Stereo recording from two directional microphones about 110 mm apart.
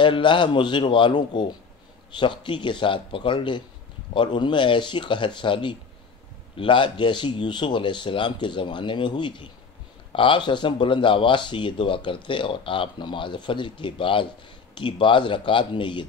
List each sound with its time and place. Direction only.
0.0 s speech: 45° left (ahead or behind)